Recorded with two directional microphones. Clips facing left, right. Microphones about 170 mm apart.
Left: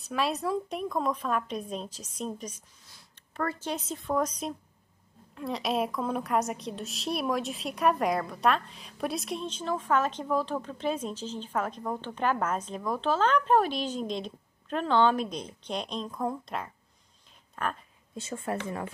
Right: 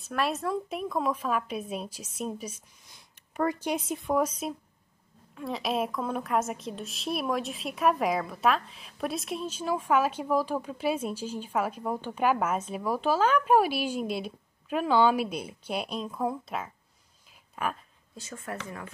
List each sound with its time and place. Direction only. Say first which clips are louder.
0.0 s a woman's voice: even; centre (ahead or behind)
17.3 s a sound: right 1 dB; 5° right (ahead or behind)
18.1 s speech: left 5 dB; 25° left (ahead or behind)